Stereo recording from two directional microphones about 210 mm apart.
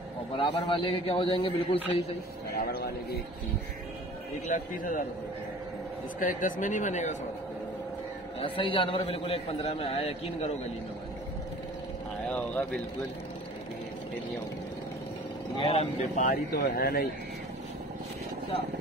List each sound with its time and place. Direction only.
0.4 s a man's voice: 25° left (ahead or behind)
2.5 s a man's voice: 45° left (ahead or behind)
4.5 s speech: 40° left (ahead or behind)
6.1 s speech: 40° left (ahead or behind)
8.4 s a man's voice: 25° left (ahead or behind)
12.3 s a sound: 5° left (ahead or behind)
15.5 s a man's voice: 25° left (ahead or behind)
16.2 s speech: 40° left (ahead or behind)